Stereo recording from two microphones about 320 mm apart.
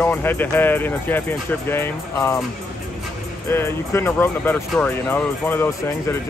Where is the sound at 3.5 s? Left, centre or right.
Centre.